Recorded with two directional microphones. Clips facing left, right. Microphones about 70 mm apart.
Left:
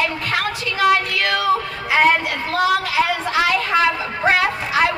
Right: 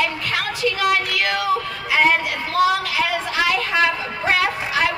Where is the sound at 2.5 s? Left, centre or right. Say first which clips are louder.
Even; left.